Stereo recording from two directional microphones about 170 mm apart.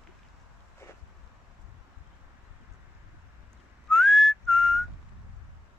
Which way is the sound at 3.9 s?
Centre (ahead or behind).